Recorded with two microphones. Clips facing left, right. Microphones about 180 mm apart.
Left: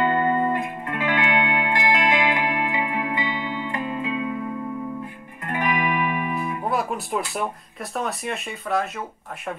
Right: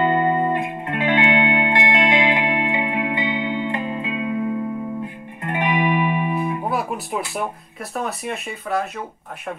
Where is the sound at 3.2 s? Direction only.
55° right (ahead or behind).